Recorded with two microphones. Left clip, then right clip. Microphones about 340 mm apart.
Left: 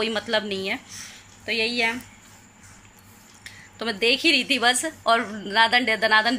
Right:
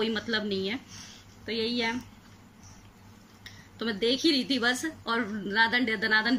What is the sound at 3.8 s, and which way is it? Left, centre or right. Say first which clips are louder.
A woman's voice: left 6 dB; centre.